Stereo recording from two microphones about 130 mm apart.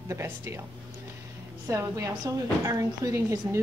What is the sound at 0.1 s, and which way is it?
Speech, 20° right (ahead or behind).